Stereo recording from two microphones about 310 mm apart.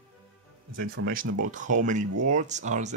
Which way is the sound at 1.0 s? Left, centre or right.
Right.